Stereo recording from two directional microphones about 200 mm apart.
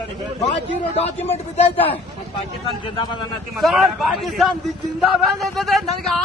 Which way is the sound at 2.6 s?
25° left (ahead or behind).